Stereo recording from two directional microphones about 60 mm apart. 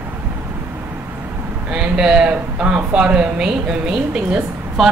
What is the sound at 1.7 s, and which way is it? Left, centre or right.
Speech, centre.